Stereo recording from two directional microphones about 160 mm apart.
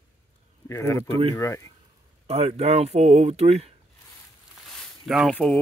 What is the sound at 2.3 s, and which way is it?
Speech, 40° right (ahead or behind).